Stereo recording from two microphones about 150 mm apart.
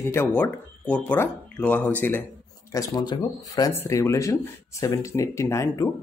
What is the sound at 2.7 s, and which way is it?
Speech, 25° left (ahead or behind).